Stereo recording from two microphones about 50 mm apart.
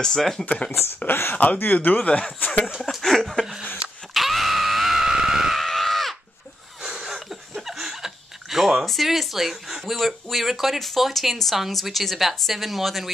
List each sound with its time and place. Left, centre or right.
0.0 s speech: centre
1.3 s speech: left
2.0 s speech: left
2.8 s chuckle: centre
4.1 s screaming: centre
5.6 s screaming: centre
6.8 s a sound: centre
8.8 s speech: centre